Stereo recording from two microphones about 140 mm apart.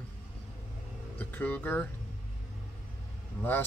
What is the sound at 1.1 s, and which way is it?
Speech, 10° left (ahead or behind).